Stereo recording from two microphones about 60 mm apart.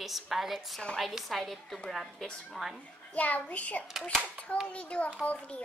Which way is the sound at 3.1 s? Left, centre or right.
Left.